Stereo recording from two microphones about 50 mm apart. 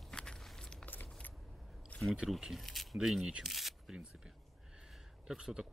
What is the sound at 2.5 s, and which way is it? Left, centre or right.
Speech, centre.